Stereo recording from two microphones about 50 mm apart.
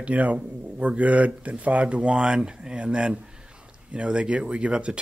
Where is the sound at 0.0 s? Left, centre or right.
Right.